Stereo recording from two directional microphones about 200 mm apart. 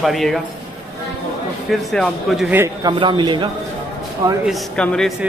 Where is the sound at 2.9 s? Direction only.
25° right (ahead or behind).